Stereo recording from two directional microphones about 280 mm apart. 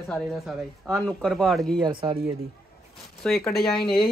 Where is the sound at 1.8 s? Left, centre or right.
Centre.